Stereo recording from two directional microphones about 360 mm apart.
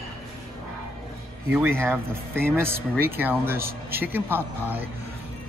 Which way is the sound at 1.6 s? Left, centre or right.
Centre.